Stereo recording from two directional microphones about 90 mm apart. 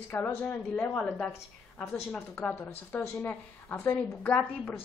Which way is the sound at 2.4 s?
20° left (ahead or behind).